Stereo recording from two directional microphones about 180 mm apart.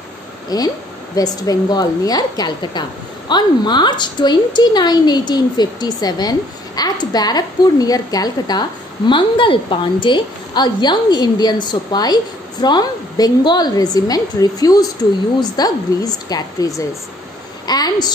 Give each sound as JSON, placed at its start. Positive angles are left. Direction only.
{"t": 0.5, "sound": "speech", "side_deg": 20}